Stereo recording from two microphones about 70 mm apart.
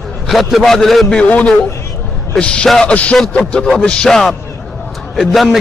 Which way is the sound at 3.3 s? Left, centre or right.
Centre.